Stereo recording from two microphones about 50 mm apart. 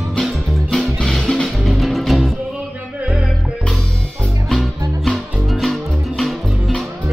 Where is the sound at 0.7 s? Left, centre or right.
Centre.